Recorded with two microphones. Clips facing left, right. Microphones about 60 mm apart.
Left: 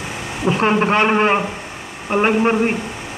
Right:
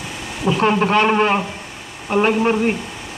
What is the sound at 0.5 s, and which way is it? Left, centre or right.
A man's voice, left.